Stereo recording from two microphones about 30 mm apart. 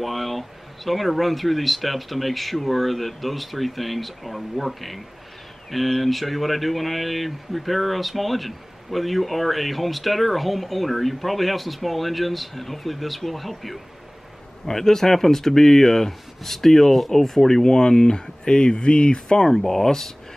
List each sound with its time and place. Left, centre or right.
0.0 s speech: centre
14.7 s speech: centre
17.6 s speech: left